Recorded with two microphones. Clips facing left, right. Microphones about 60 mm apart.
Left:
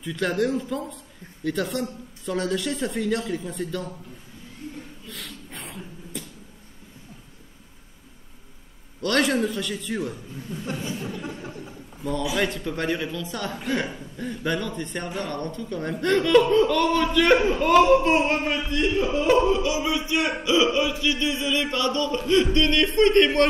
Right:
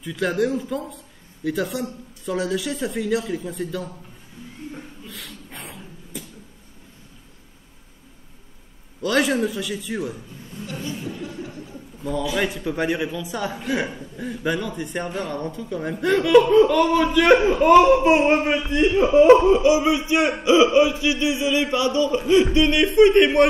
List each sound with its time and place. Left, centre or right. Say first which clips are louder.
0.0 s a man's voice: right 2 dB; centre
5.0 s a sound: right 1 dB; centre
9.0 s a man's voice: right 2 dB; centre
10.7 s speech: even; left
11.1 s chuckle: right 2 dB; left
12.0 s a man's voice: right 1 dB; centre